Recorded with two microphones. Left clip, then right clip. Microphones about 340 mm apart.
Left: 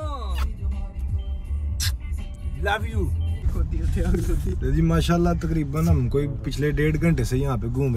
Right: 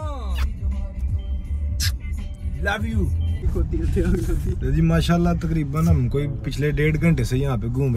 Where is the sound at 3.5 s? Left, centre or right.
Centre.